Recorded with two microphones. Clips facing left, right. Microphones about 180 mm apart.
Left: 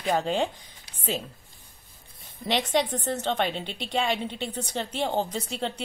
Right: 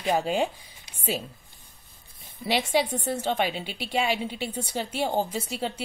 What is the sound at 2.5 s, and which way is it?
A woman's voice, 5° right (ahead or behind).